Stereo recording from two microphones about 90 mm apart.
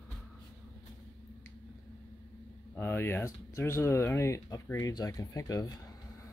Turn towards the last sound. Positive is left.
turn(degrees=40)  # may be behind; listen again after turning